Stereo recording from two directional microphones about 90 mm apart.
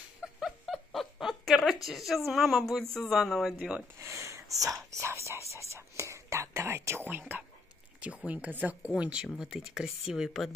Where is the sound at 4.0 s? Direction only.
30° right (ahead or behind); by 10.5 s centre (ahead or behind).